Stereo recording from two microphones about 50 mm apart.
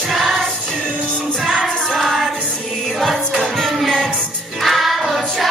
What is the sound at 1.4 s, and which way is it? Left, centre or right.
Music, centre.